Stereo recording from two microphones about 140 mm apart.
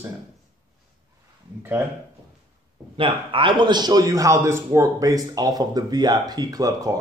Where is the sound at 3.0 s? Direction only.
35° right (ahead or behind).